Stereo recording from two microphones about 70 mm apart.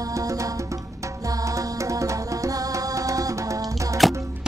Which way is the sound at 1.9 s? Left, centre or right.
Right.